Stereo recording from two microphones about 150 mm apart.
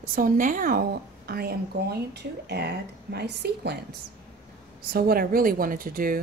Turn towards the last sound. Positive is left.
turn(degrees=-75)  # may be behind; listen again after turning